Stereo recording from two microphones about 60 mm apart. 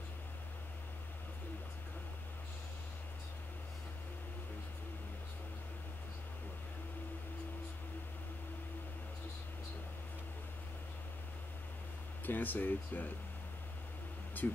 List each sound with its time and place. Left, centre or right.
12.3 s speech: left
14.4 s speech: left